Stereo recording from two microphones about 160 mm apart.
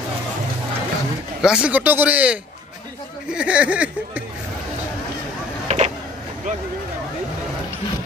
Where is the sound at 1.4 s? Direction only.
5° right (ahead or behind).